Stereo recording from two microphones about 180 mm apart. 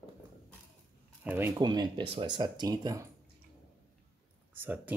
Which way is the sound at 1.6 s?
25° right (ahead or behind).